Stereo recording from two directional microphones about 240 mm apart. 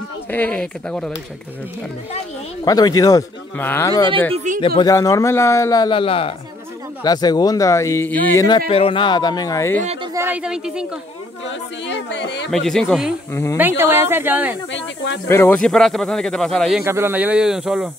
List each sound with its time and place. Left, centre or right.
0.3 s speech: centre
2.6 s speech: centre
10.1 s speech: centre
11.4 s a sound: left
12.4 s speech: centre
13.3 s speech: centre
13.6 s speech: centre
14.7 s speech: left
15.2 s speech: centre
16.8 s speech: centre